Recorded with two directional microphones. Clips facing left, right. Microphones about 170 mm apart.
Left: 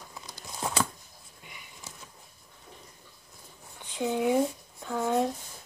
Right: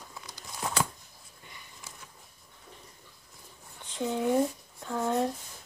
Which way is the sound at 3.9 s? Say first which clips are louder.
Left 1 dB; 5° left (ahead or behind).